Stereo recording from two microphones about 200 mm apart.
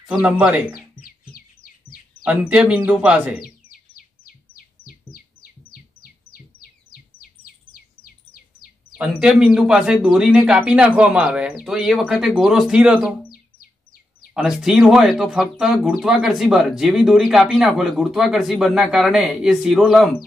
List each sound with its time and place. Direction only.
0.0 s speech: 5° right (ahead or behind)
0.7 s bird: 45° left (ahead or behind)
2.2 s speech: 5° right (ahead or behind)
3.3 s chirp: 45° left (ahead or behind)
5.1 s bird: 45° left (ahead or behind)
8.9 s speech: 5° right (ahead or behind)
14.3 s speech: centre (ahead or behind)